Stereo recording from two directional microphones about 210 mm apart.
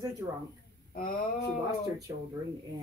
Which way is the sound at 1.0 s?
45° left (ahead or behind).